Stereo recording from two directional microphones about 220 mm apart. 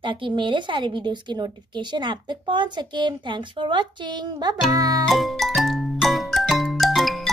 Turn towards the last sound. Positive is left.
turn(degrees=0)  # may be behind; listen again after turning